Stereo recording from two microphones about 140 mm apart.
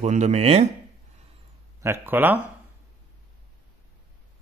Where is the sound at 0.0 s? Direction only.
55° right (ahead or behind).